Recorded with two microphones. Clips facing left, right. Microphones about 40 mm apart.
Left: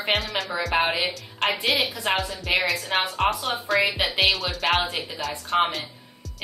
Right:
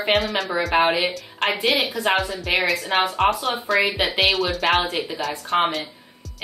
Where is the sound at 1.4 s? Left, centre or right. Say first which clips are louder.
Right 2 dB; centre.